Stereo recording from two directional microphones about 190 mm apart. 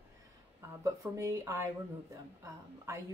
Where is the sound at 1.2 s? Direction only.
15° right (ahead or behind).